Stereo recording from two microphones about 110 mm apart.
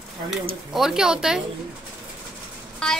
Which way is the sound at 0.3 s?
5° right (ahead or behind).